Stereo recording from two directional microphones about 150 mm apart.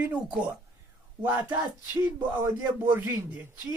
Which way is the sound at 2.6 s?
15° right (ahead or behind).